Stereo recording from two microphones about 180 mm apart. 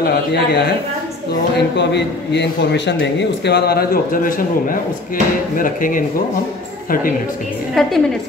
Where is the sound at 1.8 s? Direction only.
70° left (ahead or behind); by 7.2 s 50° left (ahead or behind).